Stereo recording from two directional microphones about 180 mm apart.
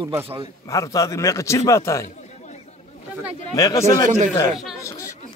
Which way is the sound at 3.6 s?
20° left (ahead or behind).